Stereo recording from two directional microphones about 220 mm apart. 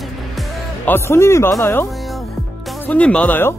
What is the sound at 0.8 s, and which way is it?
Speech, 10° left (ahead or behind).